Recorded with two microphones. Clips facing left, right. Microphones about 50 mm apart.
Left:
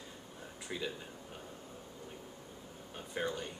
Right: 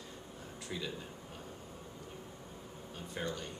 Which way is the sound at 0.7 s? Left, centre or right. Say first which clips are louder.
Left 1 dB; centre.